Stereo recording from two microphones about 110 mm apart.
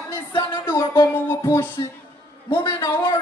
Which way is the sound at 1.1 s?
25° left (ahead or behind).